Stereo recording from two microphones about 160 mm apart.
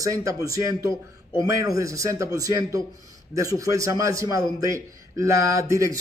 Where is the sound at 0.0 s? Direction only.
20° right (ahead or behind).